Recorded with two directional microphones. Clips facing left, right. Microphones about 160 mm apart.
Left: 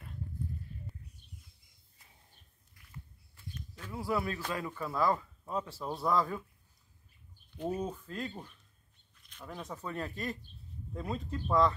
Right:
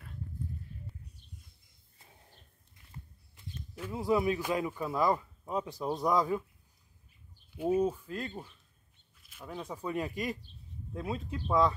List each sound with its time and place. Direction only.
2.7 s a sound: 25° right (ahead or behind)
3.9 s speech: 20° right (ahead or behind)
7.5 s speech: 10° right (ahead or behind)